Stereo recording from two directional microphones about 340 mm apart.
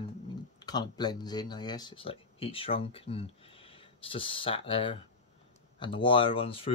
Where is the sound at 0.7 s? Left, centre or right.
Centre.